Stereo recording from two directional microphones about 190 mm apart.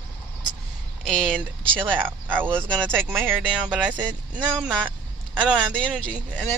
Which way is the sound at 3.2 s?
5° right (ahead or behind).